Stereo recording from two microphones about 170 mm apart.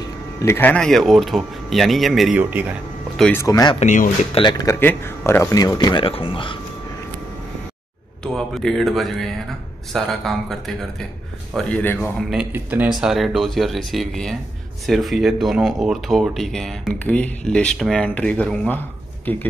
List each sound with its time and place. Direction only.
0.0 s speech: 15° left (ahead or behind); by 2.6 s 5° right (ahead or behind)
3.2 s speech: 10° left (ahead or behind)
3.4 s speech: 20° left (ahead or behind)
3.8 s speech: 45° left (ahead or behind)
4.3 s speech: 25° left (ahead or behind)
8.2 s a man's voice: centre (ahead or behind)
12.2 s speech: centre (ahead or behind)